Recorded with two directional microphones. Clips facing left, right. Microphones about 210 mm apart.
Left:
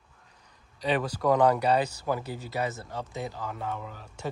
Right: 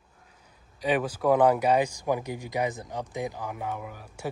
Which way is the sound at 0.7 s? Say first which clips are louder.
Right 2 dB; 10° right (ahead or behind).